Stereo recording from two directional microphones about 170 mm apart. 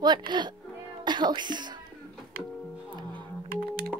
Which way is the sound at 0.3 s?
25° right (ahead or behind).